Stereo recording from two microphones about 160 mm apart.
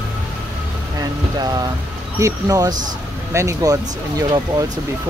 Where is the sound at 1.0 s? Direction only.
25° right (ahead or behind).